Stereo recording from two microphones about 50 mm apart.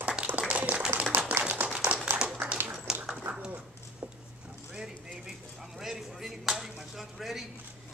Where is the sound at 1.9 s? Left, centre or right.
Right.